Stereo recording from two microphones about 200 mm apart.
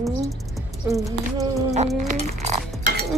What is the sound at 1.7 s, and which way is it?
Insect, 35° right (ahead or behind).